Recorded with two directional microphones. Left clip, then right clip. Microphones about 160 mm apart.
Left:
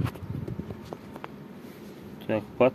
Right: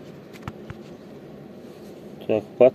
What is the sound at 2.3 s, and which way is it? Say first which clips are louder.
Speech: right 7 dB; 65° left (ahead or behind).